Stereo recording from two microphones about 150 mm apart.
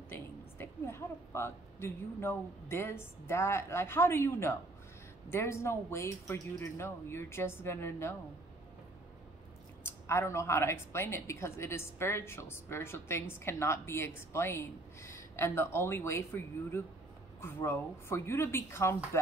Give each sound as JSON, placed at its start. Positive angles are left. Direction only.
{"t": 0.1, "sound": "a woman's voice", "side_deg": 15}
{"t": 9.8, "sound": "a woman's voice", "side_deg": 15}
{"t": 17.4, "sound": "a woman's voice", "side_deg": 15}